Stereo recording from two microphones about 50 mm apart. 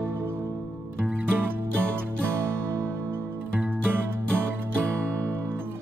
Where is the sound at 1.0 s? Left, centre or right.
Right.